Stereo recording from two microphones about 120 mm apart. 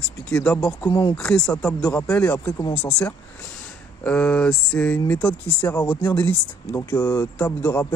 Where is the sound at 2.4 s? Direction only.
30° left (ahead or behind).